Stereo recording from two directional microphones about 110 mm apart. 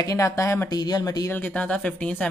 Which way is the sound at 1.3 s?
15° left (ahead or behind).